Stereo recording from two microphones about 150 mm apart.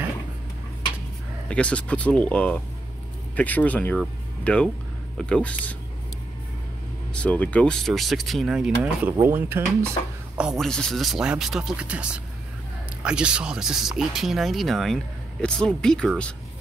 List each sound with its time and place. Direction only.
1.5 s speech: 10° left (ahead or behind)
7.2 s speech: 10° left (ahead or behind); by 9.8 s 15° right (ahead or behind)
10.3 s speech: 5° right (ahead or behind)